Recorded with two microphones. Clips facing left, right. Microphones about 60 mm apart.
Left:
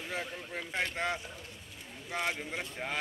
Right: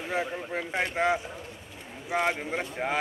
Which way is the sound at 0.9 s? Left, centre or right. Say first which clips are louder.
Right 8 dB; centre.